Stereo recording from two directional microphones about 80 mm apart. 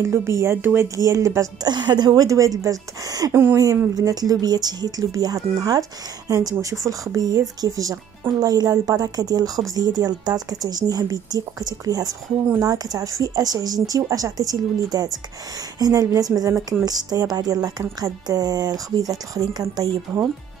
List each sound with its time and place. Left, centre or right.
0.0 s speech: right
1.6 s speech: right